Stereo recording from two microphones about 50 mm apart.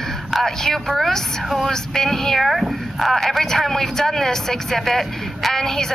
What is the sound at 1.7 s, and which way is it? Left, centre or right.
Speech, centre.